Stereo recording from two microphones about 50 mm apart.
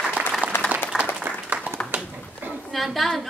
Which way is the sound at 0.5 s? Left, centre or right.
Left.